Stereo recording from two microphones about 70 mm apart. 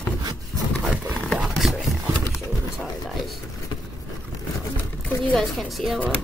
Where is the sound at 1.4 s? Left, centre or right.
Centre.